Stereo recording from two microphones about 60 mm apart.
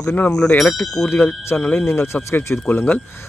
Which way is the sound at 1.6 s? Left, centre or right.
Left.